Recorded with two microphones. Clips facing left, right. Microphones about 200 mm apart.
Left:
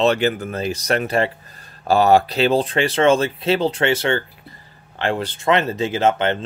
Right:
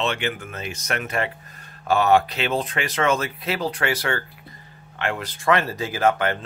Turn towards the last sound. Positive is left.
turn(degrees=25)  # may be behind; listen again after turning